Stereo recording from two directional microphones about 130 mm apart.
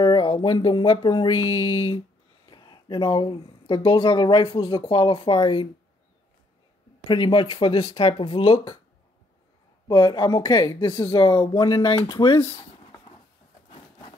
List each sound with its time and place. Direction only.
0.0 s music: 35° left (ahead or behind)
7.1 s speech: 40° left (ahead or behind)
9.8 s speech: 35° left (ahead or behind)